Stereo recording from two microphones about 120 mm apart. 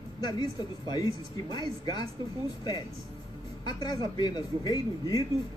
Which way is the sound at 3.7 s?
40° left (ahead or behind).